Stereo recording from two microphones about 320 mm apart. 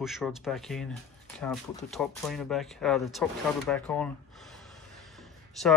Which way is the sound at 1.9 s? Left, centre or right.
Centre.